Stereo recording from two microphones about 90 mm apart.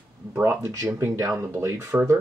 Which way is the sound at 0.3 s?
25° right (ahead or behind).